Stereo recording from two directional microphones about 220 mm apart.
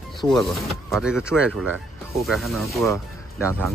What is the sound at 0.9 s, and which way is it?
Speech, 5° right (ahead or behind).